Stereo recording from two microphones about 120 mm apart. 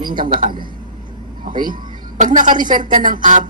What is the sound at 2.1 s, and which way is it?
A woman's voice, 90° right.